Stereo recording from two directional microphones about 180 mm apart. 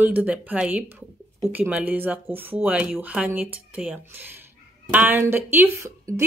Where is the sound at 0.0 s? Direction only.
10° right (ahead or behind).